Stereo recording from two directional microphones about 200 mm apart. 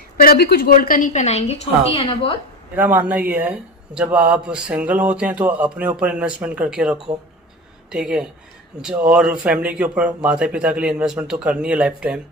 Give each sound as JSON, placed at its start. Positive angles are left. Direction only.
{"t": 0.2, "sound": "a woman's voice", "side_deg": 50}
{"t": 2.7, "sound": "speech", "side_deg": -10}